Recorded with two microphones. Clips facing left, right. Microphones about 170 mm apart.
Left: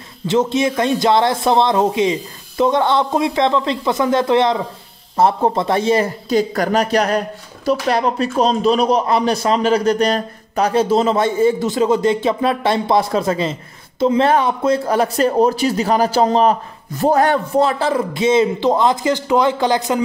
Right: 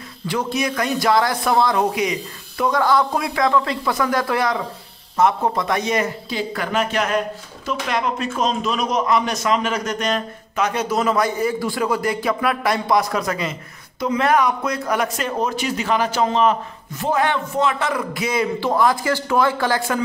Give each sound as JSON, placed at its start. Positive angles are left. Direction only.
{"t": 0.3, "sound": "speech", "side_deg": 25}